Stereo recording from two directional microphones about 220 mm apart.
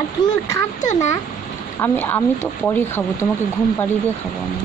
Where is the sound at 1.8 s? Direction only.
10° left (ahead or behind).